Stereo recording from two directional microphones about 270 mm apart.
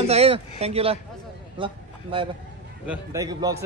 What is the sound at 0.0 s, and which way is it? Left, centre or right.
A man's voice, right.